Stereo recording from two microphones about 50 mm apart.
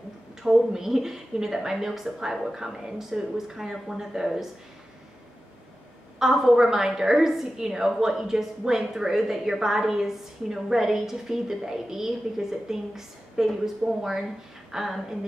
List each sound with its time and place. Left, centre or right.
0.4 s a woman's voice: centre
6.1 s a woman's voice: centre
14.7 s a sound: centre